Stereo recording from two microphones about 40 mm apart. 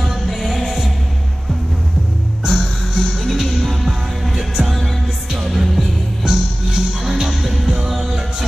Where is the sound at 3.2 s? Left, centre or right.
Centre.